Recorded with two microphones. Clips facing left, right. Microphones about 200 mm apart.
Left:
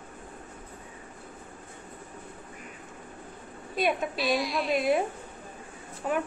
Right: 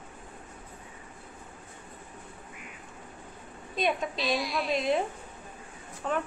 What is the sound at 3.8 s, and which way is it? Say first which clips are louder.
Speech: left 2 dB; 5° left (ahead or behind).